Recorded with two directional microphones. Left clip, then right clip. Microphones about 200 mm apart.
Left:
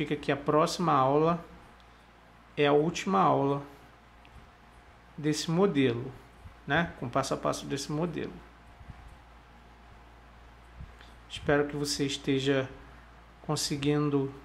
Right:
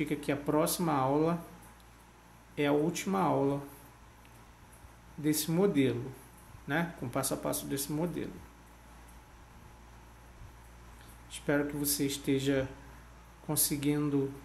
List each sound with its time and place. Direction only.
0.0 s speech: 15° left (ahead or behind)
2.5 s speech: 20° left (ahead or behind)
5.2 s speech: 15° left (ahead or behind)
11.2 s speech: 20° left (ahead or behind)